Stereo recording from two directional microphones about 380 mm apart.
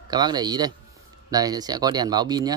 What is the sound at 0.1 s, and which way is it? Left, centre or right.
A man's voice, centre.